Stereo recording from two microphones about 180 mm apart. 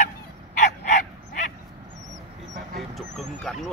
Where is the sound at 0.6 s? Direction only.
45° left (ahead or behind).